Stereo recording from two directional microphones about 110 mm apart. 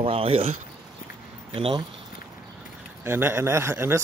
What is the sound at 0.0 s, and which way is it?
Speech, 60° right (ahead or behind).